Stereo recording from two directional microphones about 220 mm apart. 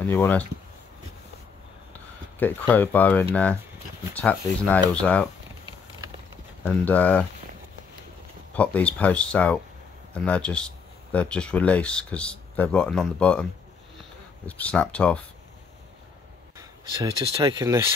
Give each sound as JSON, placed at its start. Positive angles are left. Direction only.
{"t": 0.0, "sound": "speech", "side_deg": 10}
{"t": 2.3, "sound": "speech", "side_deg": 5}
{"t": 6.8, "sound": "speech", "side_deg": 5}
{"t": 8.5, "sound": "speech", "side_deg": 5}
{"t": 16.5, "sound": "speech", "side_deg": -20}